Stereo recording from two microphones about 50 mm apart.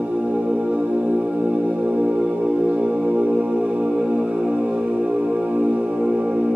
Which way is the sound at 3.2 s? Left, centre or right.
Right.